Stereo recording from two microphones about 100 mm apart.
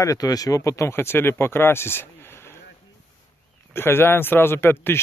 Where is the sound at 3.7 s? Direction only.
25° left (ahead or behind).